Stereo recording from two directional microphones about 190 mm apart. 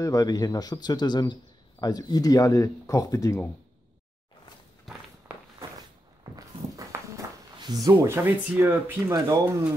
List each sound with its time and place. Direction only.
0.0 s a man's voice: 20° left (ahead or behind)
5.3 s walk: 5° right (ahead or behind)
6.9 s speech: 20° right (ahead or behind)